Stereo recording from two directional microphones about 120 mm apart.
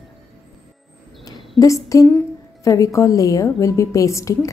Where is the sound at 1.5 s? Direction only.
25° left (ahead or behind).